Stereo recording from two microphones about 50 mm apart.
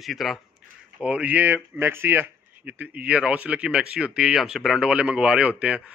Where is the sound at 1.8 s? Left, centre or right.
Right.